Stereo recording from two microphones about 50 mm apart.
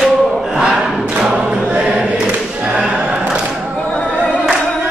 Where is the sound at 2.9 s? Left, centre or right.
Centre.